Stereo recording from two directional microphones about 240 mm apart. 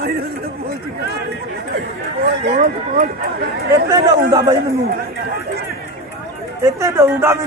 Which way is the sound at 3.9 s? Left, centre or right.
Centre.